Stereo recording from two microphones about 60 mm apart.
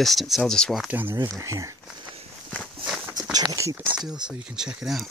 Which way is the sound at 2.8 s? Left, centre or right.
Centre.